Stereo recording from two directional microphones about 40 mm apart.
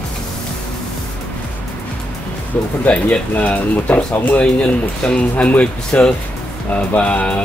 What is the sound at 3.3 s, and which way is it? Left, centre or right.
Speech, left.